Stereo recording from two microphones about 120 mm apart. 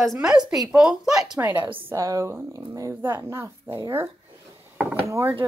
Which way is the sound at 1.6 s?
45° right (ahead or behind).